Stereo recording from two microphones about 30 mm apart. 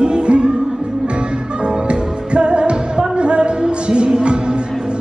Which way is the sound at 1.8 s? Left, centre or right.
Right.